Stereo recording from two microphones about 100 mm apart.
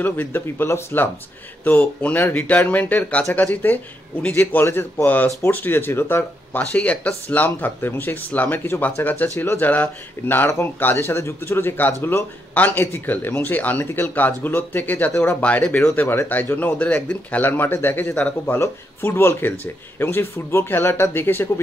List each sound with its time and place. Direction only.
0.0 s speech: 20° left (ahead or behind)
18.6 s speech: 25° left (ahead or behind)